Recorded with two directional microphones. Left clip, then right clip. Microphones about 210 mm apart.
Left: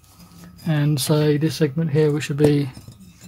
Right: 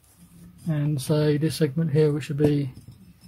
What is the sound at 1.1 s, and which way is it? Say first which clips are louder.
Speech: left 3 dB; 5° left (ahead or behind).